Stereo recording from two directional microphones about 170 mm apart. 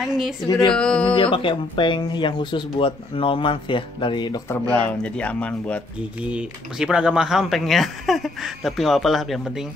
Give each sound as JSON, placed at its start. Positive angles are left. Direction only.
{"t": 0.5, "sound": "speech", "side_deg": 20}
{"t": 0.7, "sound": "speech", "side_deg": 5}
{"t": 1.1, "sound": "speech", "side_deg": 30}
{"t": 4.5, "sound": "speech", "side_deg": 10}
{"t": 6.2, "sound": "speech", "side_deg": -5}